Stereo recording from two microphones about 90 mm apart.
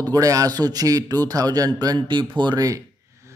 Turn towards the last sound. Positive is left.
turn(degrees=-35)  # may be behind; listen again after turning